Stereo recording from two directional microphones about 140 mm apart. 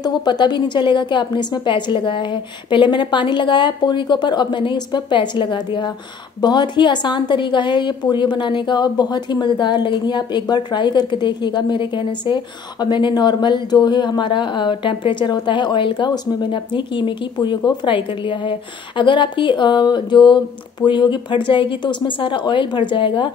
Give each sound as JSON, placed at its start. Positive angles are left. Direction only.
{"t": 0.0, "sound": "a woman's voice", "side_deg": 30}